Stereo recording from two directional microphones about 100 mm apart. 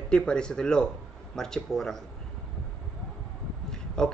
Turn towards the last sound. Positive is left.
turn(degrees=5)  # may be behind; listen again after turning